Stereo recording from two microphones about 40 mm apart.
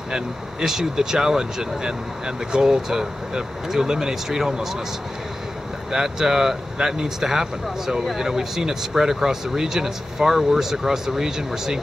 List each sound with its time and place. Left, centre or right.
0.1 s speech: centre
5.9 s speech: centre